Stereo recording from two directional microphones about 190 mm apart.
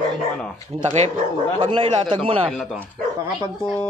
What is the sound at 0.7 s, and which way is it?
Speech, 30° right (ahead or behind).